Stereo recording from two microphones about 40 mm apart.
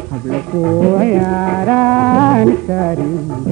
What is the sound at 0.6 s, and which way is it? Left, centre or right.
Music, centre.